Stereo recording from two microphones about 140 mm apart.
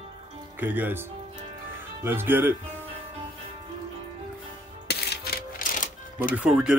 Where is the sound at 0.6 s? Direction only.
15° right (ahead or behind).